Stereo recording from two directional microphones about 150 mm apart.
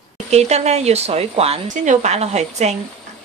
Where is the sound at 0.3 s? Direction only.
45° right (ahead or behind).